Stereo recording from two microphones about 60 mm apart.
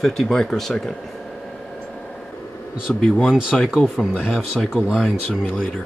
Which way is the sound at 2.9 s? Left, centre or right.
Centre.